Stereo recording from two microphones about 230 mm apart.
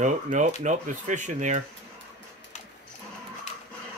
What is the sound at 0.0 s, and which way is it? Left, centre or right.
Speech, right.